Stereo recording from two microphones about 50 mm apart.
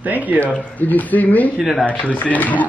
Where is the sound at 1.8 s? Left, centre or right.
Left.